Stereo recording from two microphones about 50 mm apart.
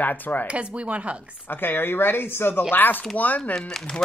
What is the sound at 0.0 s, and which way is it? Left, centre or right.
Speech, left.